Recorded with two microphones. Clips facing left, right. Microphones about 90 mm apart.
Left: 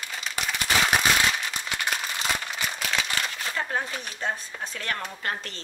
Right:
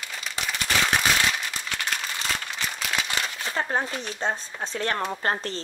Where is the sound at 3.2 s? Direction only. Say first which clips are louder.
Right 1 dB; 20° right (ahead or behind).